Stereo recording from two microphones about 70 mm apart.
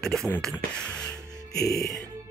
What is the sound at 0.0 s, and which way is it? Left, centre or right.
Speech, centre.